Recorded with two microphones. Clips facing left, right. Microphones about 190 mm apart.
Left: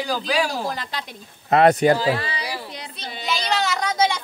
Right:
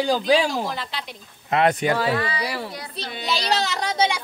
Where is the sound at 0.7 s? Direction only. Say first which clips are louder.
Left 1 dB; 45° left (ahead or behind).